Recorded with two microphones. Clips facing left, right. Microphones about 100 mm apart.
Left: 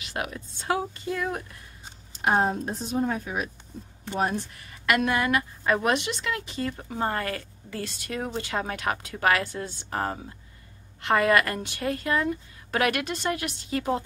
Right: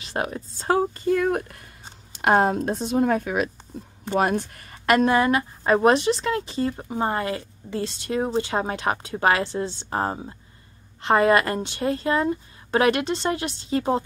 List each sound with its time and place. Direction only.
0.0 s speech: 35° right (ahead or behind); by 1.7 s 60° right (ahead or behind)
2.1 s speech: 75° right (ahead or behind)
4.6 s a woman's voice: 40° right (ahead or behind)